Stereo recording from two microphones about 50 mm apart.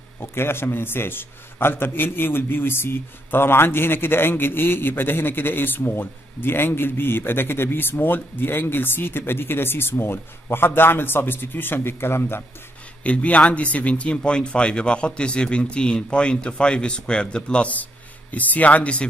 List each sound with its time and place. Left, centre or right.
0.3 s a man's voice: left
13.0 s speech: left